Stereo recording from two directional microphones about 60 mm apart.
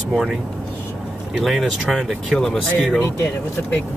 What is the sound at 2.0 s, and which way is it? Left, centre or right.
Speech, centre.